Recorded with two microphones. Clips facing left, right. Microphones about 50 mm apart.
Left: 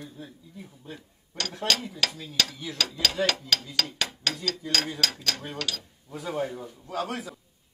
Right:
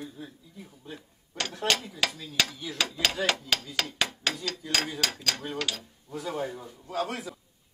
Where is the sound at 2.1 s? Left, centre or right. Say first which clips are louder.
Left 1 dB; centre.